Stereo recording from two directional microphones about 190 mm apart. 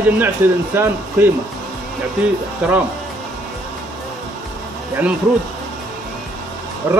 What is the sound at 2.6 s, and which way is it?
Speech, 5° right (ahead or behind).